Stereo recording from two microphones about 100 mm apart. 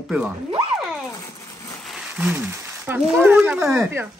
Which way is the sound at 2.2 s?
20° right (ahead or behind).